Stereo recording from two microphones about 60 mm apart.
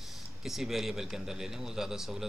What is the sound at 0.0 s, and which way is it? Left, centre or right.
A man's voice, centre.